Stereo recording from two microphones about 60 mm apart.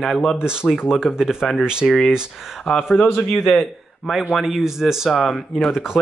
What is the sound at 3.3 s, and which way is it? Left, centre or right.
Speech, centre.